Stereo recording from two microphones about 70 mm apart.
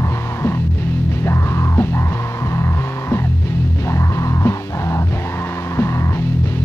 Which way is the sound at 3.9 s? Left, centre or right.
Left.